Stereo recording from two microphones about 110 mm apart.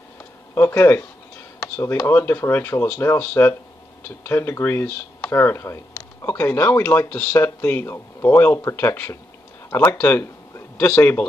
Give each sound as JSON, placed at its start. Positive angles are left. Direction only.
{"t": 0.6, "sound": "speech", "side_deg": 20}
{"t": 2.0, "sound": "speech", "side_deg": 20}
{"t": 9.9, "sound": "a sound", "side_deg": 15}
{"t": 11.0, "sound": "speech", "side_deg": 15}